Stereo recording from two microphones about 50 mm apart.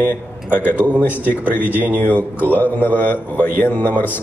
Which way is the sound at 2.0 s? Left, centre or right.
Left.